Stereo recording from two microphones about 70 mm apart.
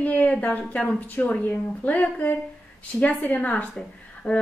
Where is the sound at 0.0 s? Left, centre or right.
Centre.